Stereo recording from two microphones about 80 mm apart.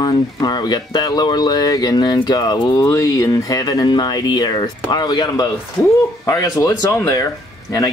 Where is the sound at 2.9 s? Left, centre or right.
Left.